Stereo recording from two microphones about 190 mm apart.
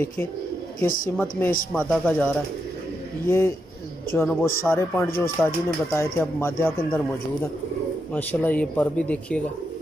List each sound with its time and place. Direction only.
0.8 s a woman's voice: 50° left (ahead or behind)
1.1 s speech: 10° left (ahead or behind)
8.1 s speech: 10° left (ahead or behind)